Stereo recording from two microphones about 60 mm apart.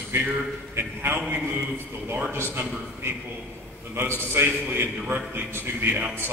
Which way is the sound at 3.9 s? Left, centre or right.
Right.